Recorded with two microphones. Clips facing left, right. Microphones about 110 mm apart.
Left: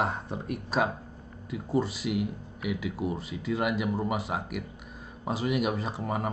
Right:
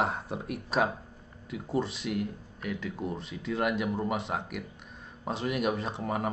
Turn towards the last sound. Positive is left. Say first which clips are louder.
# even
turn(degrees=0)  # may be behind; listen again after turning